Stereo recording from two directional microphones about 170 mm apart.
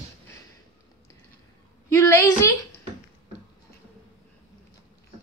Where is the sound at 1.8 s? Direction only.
15° left (ahead or behind).